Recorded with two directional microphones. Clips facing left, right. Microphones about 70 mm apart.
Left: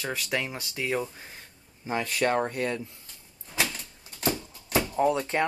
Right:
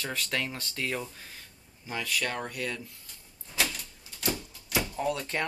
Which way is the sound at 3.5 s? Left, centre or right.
Left.